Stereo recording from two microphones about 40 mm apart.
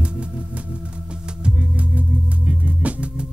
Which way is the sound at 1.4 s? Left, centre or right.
Right.